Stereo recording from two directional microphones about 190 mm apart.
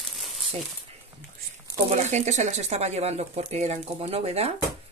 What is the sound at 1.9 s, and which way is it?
Speech, 40° right (ahead or behind).